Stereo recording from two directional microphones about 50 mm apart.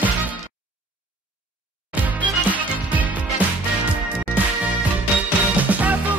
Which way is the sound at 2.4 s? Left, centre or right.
Right.